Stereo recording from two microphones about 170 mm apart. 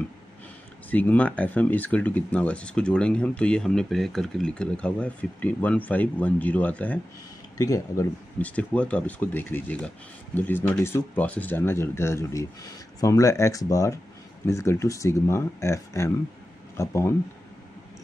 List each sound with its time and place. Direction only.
0.8 s speech: 10° left (ahead or behind)
7.5 s speech: 20° left (ahead or behind)